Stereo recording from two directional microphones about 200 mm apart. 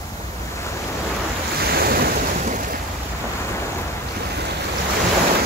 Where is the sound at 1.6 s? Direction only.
50° right (ahead or behind).